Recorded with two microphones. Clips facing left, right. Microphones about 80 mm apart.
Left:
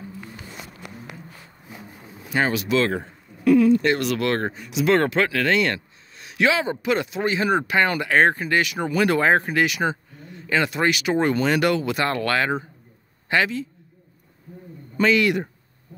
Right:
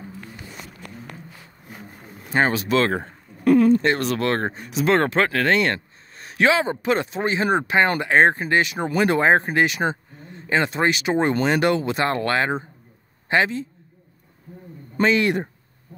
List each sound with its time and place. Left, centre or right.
2.2 s speech: right
15.0 s speech: right